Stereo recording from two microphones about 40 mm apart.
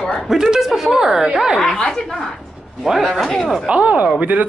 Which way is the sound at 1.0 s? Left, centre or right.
Centre.